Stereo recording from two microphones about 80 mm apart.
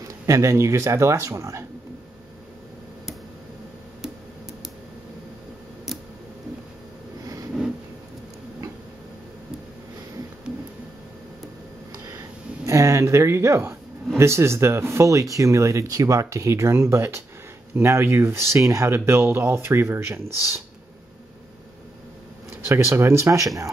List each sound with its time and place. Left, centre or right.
0.0 s speech: right
12.1 s speech: right
22.5 s speech: right